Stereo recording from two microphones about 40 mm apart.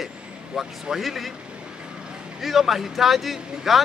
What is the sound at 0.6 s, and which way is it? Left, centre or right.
Speech, centre.